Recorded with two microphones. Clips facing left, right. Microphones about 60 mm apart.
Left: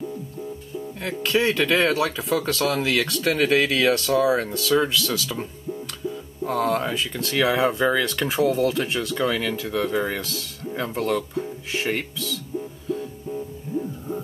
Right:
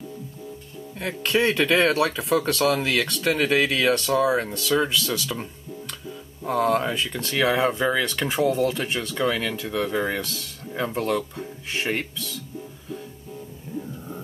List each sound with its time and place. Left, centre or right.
0.9 s speech: centre